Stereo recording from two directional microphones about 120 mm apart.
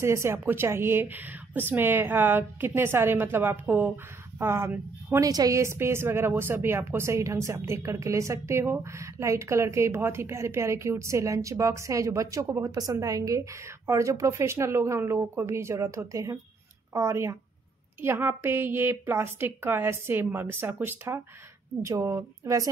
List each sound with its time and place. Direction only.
0.0 s a woman's voice: 20° right (ahead or behind)